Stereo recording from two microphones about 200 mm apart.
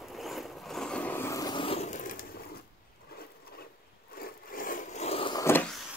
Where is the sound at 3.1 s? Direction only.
50° left (ahead or behind).